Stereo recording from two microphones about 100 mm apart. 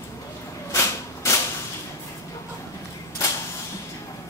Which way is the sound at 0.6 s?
30° left (ahead or behind).